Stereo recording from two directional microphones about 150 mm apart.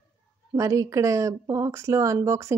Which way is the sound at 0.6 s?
20° right (ahead or behind).